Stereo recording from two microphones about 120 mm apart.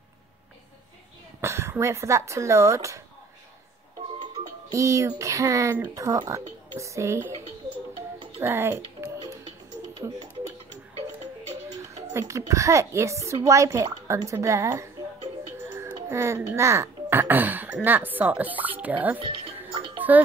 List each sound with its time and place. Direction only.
1.4 s speech: 25° right (ahead or behind)
4.2 s speech: 30° right (ahead or behind)
8.4 s a child's voice: 20° right (ahead or behind)
12.1 s speech: 25° right (ahead or behind)
16.1 s a child's voice: 25° right (ahead or behind)
19.1 s music: 45° right (ahead or behind)
20.0 s speech: 15° right (ahead or behind)